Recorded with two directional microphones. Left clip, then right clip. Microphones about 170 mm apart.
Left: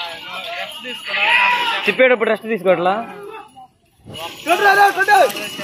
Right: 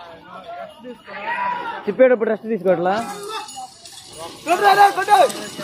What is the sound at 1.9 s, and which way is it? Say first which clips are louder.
Speech: even; 15° right (ahead or behind).